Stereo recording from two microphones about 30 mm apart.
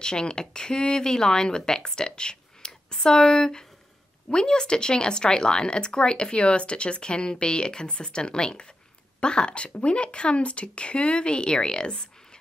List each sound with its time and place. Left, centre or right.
0.0 s speech: left